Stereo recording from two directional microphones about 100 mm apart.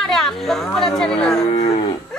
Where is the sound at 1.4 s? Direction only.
85° left.